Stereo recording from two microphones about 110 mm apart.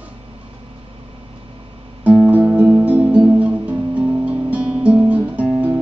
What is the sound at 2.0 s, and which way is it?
Music, 15° right (ahead or behind).